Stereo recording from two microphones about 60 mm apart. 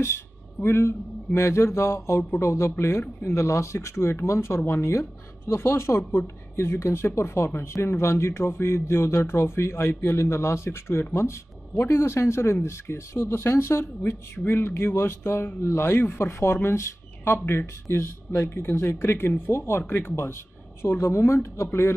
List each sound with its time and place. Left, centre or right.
0.7 s speech: left
21.0 s speech: left